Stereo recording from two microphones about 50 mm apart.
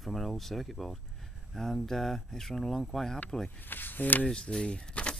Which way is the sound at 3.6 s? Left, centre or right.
Left.